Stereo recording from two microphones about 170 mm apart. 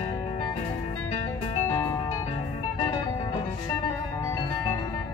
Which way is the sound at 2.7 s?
25° left (ahead or behind).